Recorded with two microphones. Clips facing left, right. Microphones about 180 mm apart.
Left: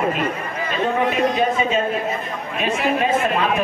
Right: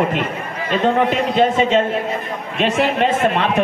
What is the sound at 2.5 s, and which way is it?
Speech, 80° right.